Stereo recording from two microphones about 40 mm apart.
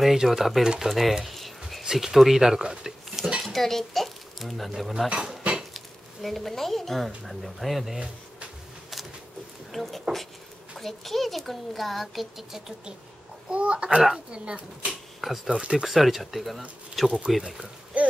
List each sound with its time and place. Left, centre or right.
0.0 s speech: centre
1.8 s speech: centre
2.6 s a sound: centre
3.4 s a child's voice: centre
6.2 s speech: centre
9.7 s speech: centre
12.5 s speech: centre
13.5 s speech: right
15.1 s speech: centre
15.5 s speech: right
15.8 s speech: centre
17.4 s speech: centre
17.9 s a sound: right